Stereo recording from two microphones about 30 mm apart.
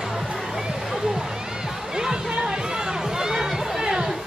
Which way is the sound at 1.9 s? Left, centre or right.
Right.